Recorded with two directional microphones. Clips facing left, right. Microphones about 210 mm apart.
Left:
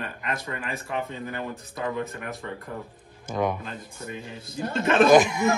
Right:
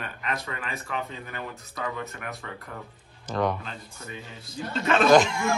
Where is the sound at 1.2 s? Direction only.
20° left (ahead or behind).